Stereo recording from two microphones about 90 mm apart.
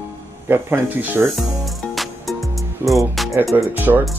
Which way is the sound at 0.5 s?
20° right (ahead or behind).